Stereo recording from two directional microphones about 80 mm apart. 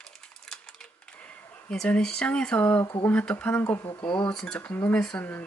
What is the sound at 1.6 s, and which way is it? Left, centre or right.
Speech, centre.